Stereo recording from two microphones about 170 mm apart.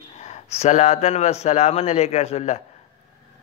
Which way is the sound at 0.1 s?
40° left (ahead or behind).